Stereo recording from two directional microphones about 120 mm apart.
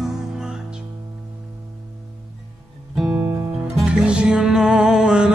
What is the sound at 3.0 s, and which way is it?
Music, 5° right (ahead or behind).